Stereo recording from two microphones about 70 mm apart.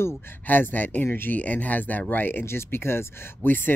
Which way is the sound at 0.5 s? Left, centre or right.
Left.